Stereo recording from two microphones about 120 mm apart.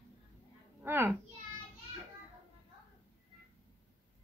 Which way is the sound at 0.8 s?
20° right (ahead or behind).